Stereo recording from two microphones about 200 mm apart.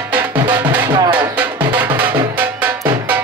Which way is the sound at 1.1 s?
10° right (ahead or behind).